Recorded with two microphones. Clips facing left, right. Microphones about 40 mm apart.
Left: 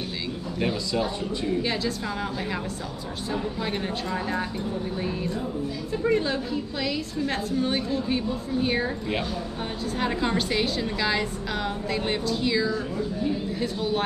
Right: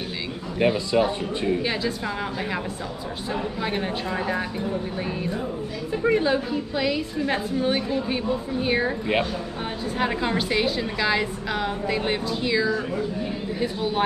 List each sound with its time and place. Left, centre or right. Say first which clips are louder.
0.6 s speech: right 6 dB; right
1.6 s a woman's voice: right 1 dB; centre
3.6 s a woman's voice: right 2 dB; centre
6.0 s a woman's voice: right 3 dB; centre
9.9 s a woman's voice: right 1 dB; centre